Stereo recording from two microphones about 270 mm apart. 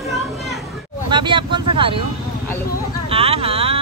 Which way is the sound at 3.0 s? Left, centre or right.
Right.